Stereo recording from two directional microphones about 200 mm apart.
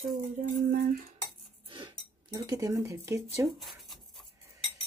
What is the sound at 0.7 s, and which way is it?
Cutlery, 50° right (ahead or behind).